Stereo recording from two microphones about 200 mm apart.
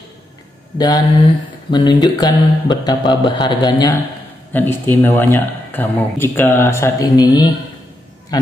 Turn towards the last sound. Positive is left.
turn(degrees=20)  # may be behind; listen again after turning